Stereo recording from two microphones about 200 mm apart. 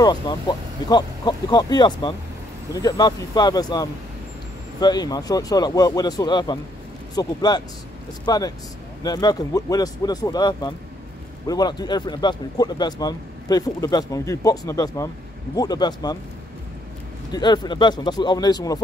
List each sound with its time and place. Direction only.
0.0 s speech: 20° left (ahead or behind)
17.3 s speech: 20° left (ahead or behind)